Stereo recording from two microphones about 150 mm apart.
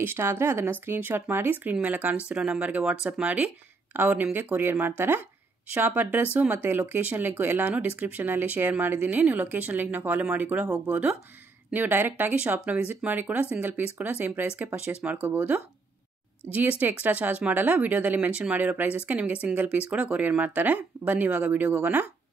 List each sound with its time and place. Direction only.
0.0 s speech: 15° right (ahead or behind)
16.8 s speech: 10° right (ahead or behind)